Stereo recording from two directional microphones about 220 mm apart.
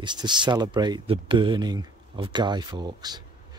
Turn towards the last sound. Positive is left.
turn(degrees=-20)  # may be behind; listen again after turning